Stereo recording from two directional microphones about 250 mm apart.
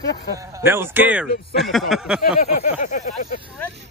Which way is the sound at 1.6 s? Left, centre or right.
Centre.